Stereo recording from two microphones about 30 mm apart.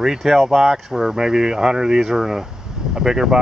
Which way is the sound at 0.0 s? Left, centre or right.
Centre.